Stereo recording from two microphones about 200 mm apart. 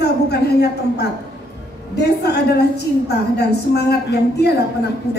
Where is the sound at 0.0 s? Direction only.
55° left (ahead or behind).